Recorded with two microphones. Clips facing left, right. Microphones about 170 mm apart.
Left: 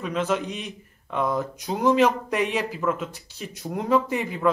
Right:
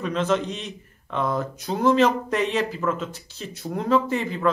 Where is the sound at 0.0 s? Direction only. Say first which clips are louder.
Right 2 dB; 10° left (ahead or behind).